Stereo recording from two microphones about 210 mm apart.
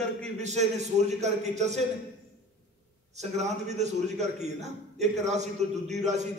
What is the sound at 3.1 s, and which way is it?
A man's voice, 35° right (ahead or behind).